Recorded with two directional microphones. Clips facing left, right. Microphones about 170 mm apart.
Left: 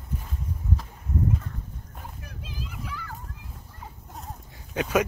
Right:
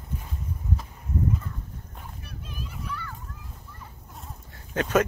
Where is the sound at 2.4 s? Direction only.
90° left.